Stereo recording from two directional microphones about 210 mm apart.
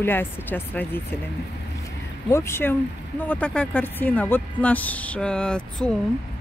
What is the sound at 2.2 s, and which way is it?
Speech, 10° left (ahead or behind).